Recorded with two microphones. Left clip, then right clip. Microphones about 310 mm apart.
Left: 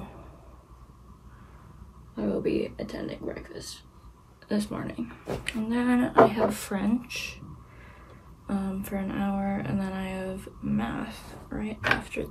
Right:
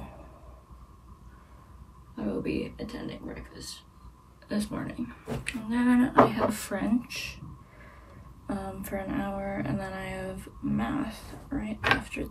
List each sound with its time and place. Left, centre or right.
2.1 s speech: centre
8.5 s a sound: centre
12.1 s speech: centre